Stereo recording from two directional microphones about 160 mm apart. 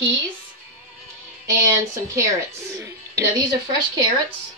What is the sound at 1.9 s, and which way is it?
Speech, 20° right (ahead or behind).